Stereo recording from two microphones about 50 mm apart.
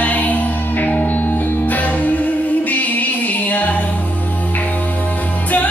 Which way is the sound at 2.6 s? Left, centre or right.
Left.